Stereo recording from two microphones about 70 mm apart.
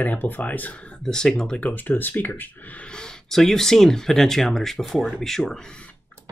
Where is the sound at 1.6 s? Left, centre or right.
Left.